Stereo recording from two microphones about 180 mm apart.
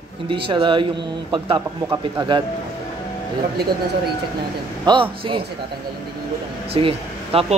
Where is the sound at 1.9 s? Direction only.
25° right (ahead or behind).